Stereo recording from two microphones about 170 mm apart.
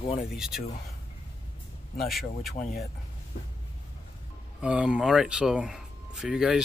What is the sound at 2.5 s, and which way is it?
Speech, 60° left (ahead or behind).